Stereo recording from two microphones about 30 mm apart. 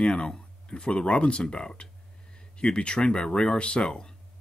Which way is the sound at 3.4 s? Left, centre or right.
Left.